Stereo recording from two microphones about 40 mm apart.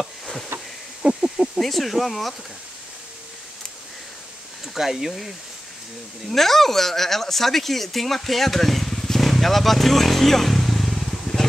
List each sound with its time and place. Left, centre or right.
0.0 s a sound: centre
1.0 s speech: right
1.6 s speech: centre
4.7 s speech: centre
6.2 s speech: centre